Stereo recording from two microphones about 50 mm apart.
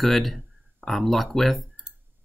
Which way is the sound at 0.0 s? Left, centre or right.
Centre.